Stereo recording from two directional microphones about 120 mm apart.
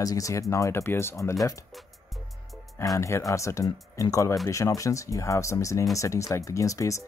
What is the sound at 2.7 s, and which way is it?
Speech, 25° left (ahead or behind).